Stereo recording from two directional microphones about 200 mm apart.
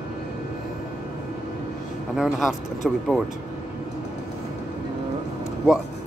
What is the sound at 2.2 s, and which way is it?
Speech, centre (ahead or behind).